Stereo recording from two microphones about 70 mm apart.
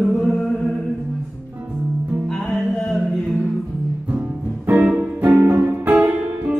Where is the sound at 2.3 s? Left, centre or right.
Centre.